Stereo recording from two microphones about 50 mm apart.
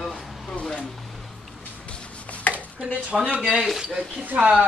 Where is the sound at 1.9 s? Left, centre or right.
Left.